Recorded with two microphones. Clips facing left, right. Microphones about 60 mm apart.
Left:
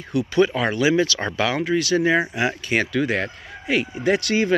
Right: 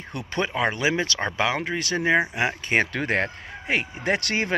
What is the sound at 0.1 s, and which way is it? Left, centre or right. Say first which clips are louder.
Speech: left 9 dB; right.